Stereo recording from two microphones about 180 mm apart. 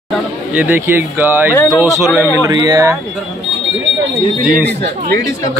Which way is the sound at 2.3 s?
20° right (ahead or behind).